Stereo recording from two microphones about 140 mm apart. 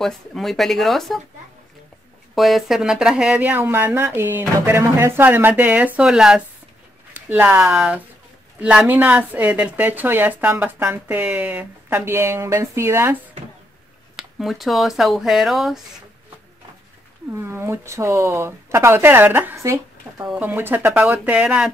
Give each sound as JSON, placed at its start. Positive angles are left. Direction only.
{"t": 0.0, "sound": "speech", "side_deg": 0}
{"t": 2.3, "sound": "a woman's voice", "side_deg": 0}
{"t": 14.1, "sound": "speech", "side_deg": 0}
{"t": 17.3, "sound": "a woman's voice", "side_deg": -15}